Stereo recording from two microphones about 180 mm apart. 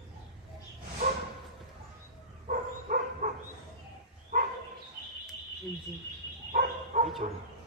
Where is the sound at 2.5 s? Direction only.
50° right (ahead or behind).